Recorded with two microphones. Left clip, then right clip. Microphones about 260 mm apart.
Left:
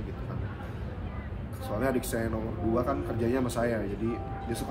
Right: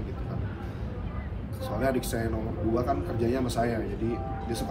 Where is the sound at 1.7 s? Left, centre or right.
Centre.